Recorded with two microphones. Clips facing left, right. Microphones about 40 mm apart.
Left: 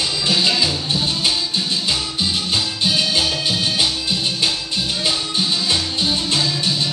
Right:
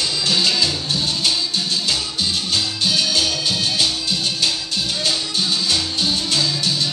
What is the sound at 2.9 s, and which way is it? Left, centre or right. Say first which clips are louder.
Music: left 1 dB; left.